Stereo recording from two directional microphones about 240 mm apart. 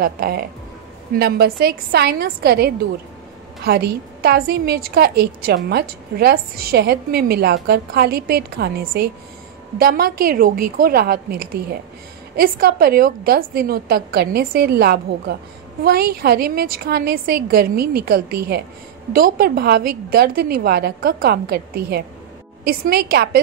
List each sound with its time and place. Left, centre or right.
0.0 s a woman's voice: right